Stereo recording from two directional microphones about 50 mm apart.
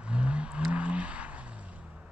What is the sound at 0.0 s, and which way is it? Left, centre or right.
Vehicle, right.